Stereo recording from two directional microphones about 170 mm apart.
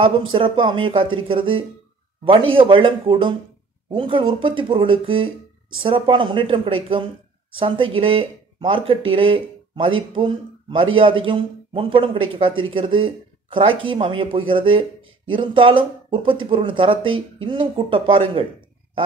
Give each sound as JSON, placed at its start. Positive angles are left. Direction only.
{"t": 0.0, "sound": "speech", "side_deg": -30}